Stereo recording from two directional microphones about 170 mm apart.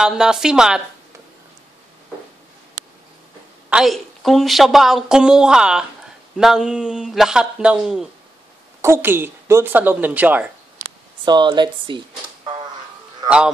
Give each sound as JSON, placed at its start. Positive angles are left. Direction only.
{"t": 0.0, "sound": "a woman's voice", "side_deg": -5}
{"t": 3.7, "sound": "a woman's voice", "side_deg": 0}
{"t": 8.8, "sound": "a woman's voice", "side_deg": -15}
{"t": 11.2, "sound": "speech", "side_deg": -25}